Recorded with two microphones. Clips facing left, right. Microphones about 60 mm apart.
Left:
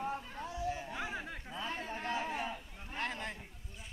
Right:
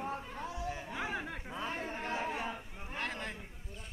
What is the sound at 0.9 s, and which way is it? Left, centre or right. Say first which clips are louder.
Chatter: right 2 dB; right.